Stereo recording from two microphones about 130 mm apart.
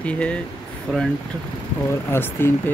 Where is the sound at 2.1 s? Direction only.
15° left (ahead or behind).